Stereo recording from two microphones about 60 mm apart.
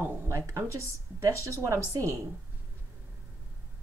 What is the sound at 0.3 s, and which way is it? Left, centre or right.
Speech, right.